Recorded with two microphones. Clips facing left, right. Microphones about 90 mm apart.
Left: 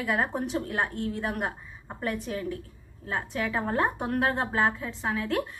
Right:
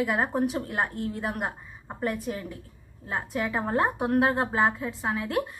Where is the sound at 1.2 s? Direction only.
10° right (ahead or behind).